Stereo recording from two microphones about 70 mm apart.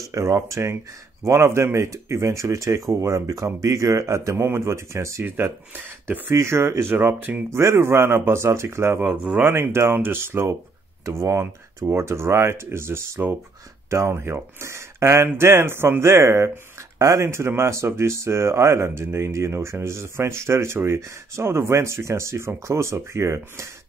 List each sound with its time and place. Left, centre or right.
0.0 s speech: right
5.2 s speech: right
9.0 s speech: right